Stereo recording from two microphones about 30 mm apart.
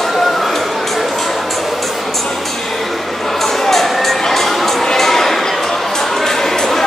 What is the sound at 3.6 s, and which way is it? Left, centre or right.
Crowd, centre.